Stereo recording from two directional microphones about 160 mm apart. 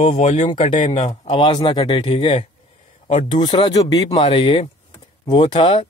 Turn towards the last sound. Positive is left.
turn(degrees=35)  # may be behind; listen again after turning